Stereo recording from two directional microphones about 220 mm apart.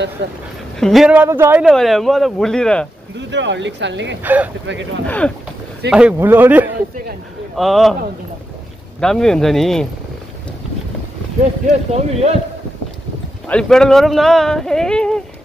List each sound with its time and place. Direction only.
0.2 s speech: 50° right (ahead or behind)
0.7 s speech: centre (ahead or behind)
1.7 s speech: centre (ahead or behind)
3.2 s speech: 55° right (ahead or behind)
4.2 s speech: 10° right (ahead or behind)
5.0 s speech: 5° left (ahead or behind)
5.9 s speech: 5° right (ahead or behind)
9.0 s speech: 5° left (ahead or behind)
11.9 s a man's voice: 30° right (ahead or behind)
13.5 s speech: 5° left (ahead or behind)